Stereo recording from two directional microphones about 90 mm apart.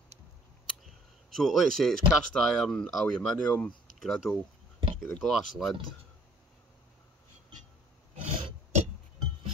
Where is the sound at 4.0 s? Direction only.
Centre (ahead or behind).